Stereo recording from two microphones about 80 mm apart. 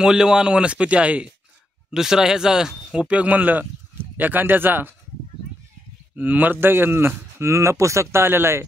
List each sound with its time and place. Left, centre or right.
0.0 s speech: centre; by 4.9 s right
6.1 s speech: right